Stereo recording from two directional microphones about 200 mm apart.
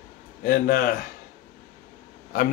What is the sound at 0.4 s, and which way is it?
Speech, 45° left (ahead or behind).